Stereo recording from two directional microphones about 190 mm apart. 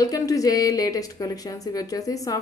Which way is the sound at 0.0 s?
20° left (ahead or behind).